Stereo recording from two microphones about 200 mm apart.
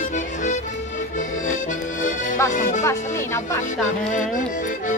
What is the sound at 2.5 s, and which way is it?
Music, 40° left (ahead or behind).